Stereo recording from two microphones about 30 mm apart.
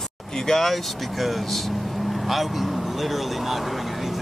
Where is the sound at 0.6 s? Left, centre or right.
Centre.